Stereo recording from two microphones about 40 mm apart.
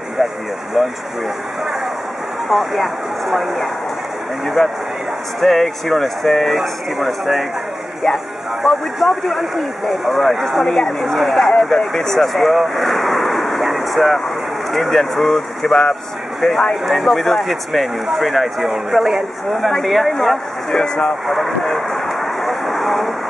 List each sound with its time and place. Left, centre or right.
0.8 s speech: centre
2.5 s speech: centre
5.4 s speech: centre
8.6 s speech: centre
12.6 s vehicle: centre
14.7 s speech: centre
20.7 s speech: centre
21.1 s speech: centre
21.6 s vehicle: centre